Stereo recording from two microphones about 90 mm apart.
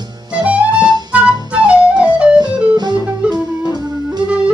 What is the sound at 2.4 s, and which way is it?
Music, 50° right (ahead or behind).